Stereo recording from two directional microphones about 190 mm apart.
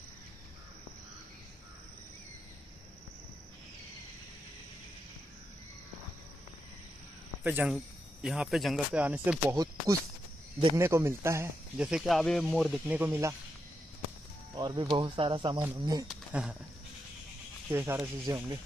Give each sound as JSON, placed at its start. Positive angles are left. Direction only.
{"t": 7.4, "sound": "speech", "side_deg": -5}
{"t": 11.7, "sound": "speech", "side_deg": -5}
{"t": 14.5, "sound": "speech", "side_deg": -20}
{"t": 16.1, "sound": "a sound", "side_deg": -5}
{"t": 17.6, "sound": "speech", "side_deg": -10}